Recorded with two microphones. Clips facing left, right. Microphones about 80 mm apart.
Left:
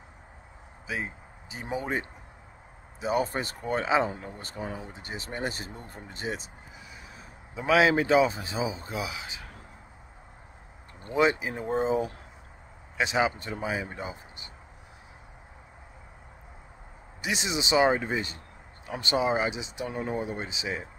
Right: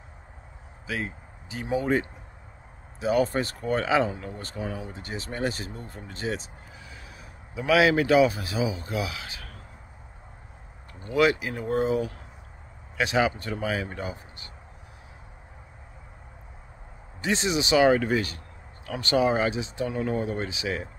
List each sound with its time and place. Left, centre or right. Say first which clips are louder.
0.8 s a man's voice: right 2 dB; centre
11.1 s speech: right 2 dB; left
17.2 s speech: right 5 dB; centre